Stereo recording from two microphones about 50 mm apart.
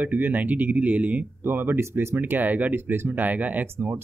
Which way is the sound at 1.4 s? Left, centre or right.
Right.